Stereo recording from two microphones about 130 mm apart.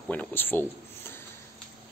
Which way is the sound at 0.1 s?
15° left (ahead or behind).